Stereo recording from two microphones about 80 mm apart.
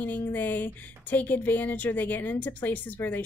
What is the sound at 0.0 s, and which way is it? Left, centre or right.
A woman's voice, left.